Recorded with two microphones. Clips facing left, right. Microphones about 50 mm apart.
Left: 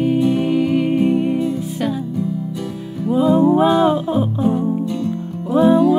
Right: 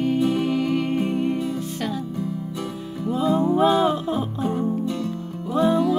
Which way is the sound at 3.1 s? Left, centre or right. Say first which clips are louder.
Left 7 dB; centre.